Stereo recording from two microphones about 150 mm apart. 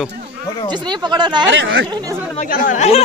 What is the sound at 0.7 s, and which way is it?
Speech, 30° right (ahead or behind).